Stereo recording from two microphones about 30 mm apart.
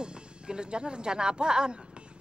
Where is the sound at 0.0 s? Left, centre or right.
Right.